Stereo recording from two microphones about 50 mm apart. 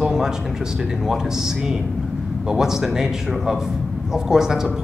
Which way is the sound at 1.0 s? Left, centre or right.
Centre.